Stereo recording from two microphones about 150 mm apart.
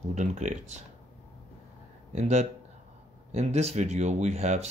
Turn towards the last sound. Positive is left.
turn(degrees=-45)  # may be behind; listen again after turning